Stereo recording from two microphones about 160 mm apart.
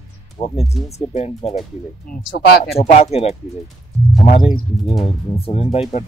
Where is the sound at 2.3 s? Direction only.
80° left.